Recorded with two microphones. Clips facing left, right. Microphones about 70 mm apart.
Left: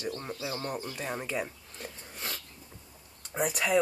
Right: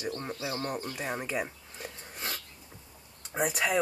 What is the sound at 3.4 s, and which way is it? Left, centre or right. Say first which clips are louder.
Speech: even; centre.